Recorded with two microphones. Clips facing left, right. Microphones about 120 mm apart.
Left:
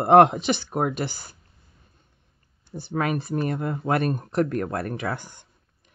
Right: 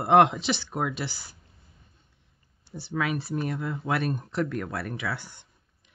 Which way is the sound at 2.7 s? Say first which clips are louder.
Left 3 dB; 50° left (ahead or behind).